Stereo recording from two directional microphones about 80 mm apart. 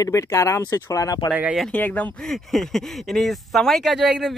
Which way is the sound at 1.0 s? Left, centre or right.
Left.